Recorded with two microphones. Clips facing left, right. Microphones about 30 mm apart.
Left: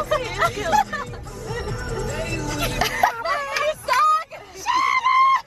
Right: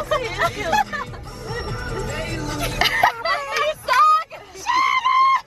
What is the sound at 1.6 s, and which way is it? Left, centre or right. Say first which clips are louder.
Music: even; right.